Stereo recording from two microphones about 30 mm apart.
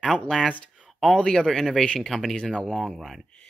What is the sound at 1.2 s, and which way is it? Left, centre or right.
Speech, left.